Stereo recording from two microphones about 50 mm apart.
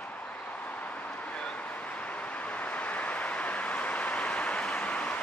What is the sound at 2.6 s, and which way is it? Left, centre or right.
Vehicle, left.